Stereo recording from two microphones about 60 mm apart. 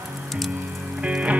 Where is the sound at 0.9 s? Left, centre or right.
Centre.